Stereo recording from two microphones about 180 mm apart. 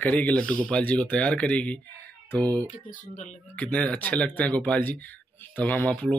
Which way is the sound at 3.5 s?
5° left (ahead or behind).